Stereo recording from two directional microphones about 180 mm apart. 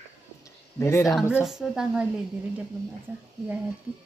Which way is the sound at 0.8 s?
15° left (ahead or behind).